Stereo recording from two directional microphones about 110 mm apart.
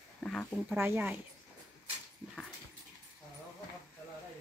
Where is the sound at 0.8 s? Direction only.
20° right (ahead or behind).